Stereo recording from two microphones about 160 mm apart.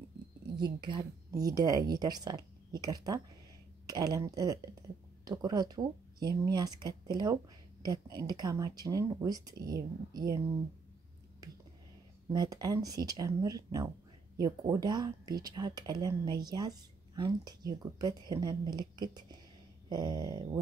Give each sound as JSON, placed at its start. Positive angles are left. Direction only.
{"t": 0.6, "sound": "speech", "side_deg": -30}
{"t": 12.3, "sound": "speech", "side_deg": -25}